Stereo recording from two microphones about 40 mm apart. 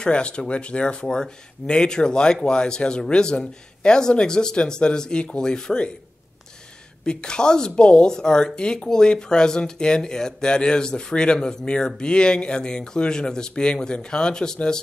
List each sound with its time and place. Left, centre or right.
0.0 s speech: left
7.1 s speech: left